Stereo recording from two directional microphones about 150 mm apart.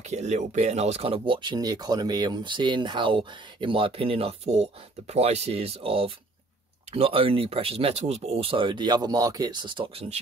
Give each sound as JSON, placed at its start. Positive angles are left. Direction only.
{"t": 0.1, "sound": "speech", "side_deg": -50}